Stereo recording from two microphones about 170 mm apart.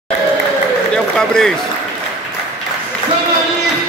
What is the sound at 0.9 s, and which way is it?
Speech, 5° left (ahead or behind).